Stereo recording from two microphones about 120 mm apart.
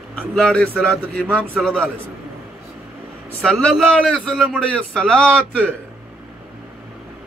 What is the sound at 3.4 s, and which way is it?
Speech, 10° left (ahead or behind).